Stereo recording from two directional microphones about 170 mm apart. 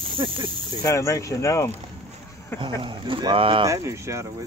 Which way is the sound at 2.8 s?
30° right (ahead or behind).